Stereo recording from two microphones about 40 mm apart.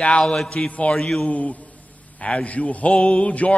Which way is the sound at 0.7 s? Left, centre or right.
Left.